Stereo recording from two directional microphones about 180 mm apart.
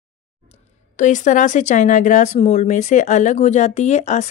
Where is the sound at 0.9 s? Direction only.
45° left (ahead or behind).